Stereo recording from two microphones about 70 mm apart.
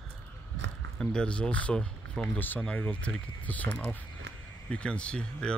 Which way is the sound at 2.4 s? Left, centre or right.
Left.